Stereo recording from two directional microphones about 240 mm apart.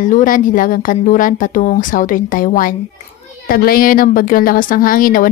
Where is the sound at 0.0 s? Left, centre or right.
Left.